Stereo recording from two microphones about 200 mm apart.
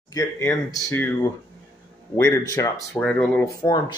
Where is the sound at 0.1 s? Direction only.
15° left (ahead or behind).